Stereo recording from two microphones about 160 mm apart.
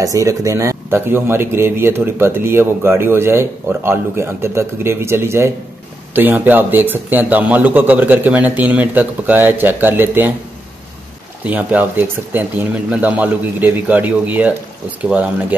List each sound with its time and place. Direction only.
0.0 s speech: 20° right (ahead or behind)
11.4 s speech: 10° right (ahead or behind)